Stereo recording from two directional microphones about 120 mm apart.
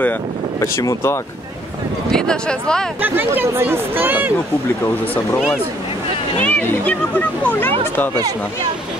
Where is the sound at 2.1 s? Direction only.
5° left (ahead or behind).